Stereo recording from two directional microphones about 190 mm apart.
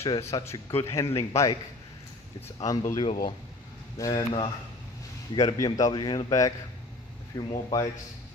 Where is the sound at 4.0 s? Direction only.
25° left (ahead or behind).